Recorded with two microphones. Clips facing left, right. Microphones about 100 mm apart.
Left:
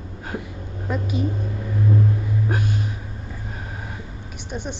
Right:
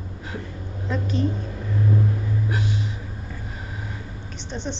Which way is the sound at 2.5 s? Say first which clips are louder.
Left 2 dB; 50° left (ahead or behind).